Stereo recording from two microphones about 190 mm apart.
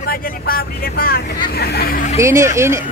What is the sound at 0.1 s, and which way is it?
Speech, 50° left (ahead or behind).